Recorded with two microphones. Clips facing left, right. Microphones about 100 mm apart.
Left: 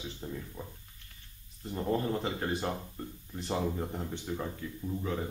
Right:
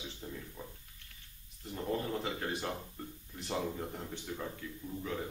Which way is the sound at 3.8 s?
20° left (ahead or behind).